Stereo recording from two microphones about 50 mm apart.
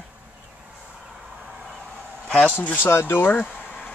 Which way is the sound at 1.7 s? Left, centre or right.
Centre.